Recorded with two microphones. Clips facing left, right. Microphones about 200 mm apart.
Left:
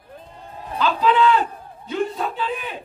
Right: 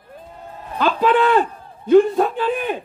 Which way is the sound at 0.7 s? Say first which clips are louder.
Right 2 dB; 50° right (ahead or behind).